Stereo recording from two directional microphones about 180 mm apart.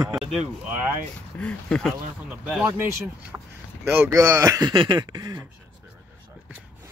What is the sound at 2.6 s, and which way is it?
Speech, 10° right (ahead or behind).